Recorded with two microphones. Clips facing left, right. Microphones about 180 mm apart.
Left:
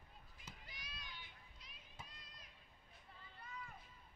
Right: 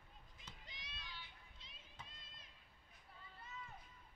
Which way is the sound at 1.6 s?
25° right (ahead or behind).